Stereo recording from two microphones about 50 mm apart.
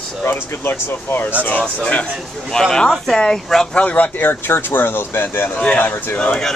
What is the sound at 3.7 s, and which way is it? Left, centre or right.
Speech, left.